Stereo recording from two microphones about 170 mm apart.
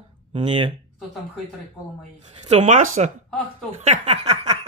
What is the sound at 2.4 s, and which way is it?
Speech, 40° right (ahead or behind).